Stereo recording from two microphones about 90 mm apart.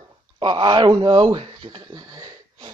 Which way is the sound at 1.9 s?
45° right (ahead or behind).